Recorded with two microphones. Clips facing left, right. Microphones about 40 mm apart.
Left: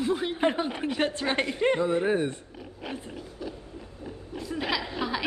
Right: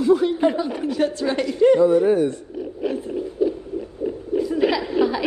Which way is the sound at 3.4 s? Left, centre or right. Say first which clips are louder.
Right 17 dB; right.